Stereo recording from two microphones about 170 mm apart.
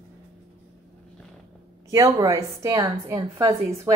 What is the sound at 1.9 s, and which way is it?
Speech, 20° right (ahead or behind).